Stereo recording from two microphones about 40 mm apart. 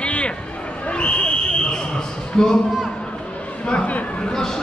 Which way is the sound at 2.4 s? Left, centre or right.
Centre.